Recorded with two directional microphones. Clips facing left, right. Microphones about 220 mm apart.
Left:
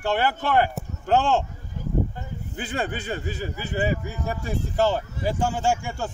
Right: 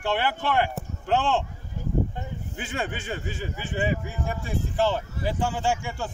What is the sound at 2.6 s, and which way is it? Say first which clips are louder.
Speech: left 3 dB; 35° left (ahead or behind).